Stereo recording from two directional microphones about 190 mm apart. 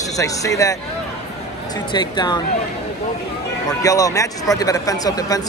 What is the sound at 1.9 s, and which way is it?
Speech, 20° left (ahead or behind).